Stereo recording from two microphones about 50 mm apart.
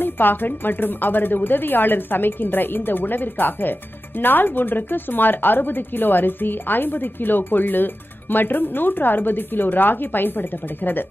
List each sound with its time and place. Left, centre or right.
0.0 s a woman's voice: left